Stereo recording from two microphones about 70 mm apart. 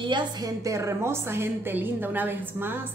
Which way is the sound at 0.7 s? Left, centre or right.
Right.